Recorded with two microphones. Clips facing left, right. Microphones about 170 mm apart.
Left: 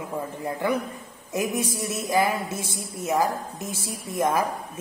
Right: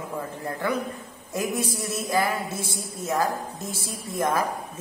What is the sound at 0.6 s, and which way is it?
A woman's voice, 15° left (ahead or behind).